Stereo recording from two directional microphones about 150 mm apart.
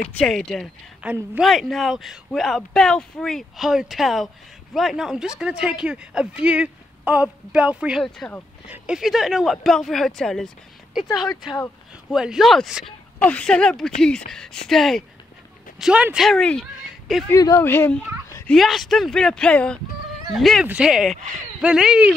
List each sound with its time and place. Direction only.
0.1 s speech: 5° left (ahead or behind)
1.0 s speech: 10° right (ahead or behind)
1.4 s speech: centre (ahead or behind)
8.0 s speech: 5° left (ahead or behind)
8.6 s speech: 10° right (ahead or behind)
12.1 s speech: 5° right (ahead or behind)
16.3 s speech: 5° left (ahead or behind)
17.3 s speech: 20° left (ahead or behind)
18.5 s speech: centre (ahead or behind)